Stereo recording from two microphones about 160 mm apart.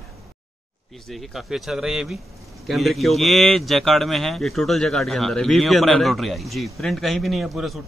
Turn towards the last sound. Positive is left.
turn(degrees=0)  # may be behind; listen again after turning